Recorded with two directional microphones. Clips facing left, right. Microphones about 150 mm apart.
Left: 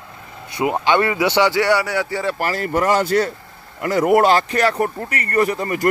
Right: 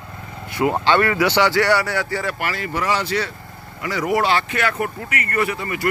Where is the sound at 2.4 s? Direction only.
40° left (ahead or behind).